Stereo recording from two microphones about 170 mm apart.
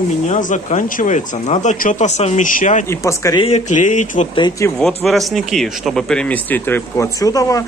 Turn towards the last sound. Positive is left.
turn(degrees=20)  # may be behind; listen again after turning